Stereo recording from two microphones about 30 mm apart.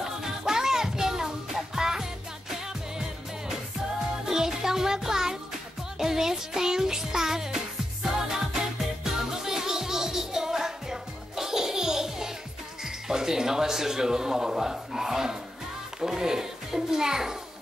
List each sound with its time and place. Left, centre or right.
0.0 s music: centre
12.8 s a child's voice: centre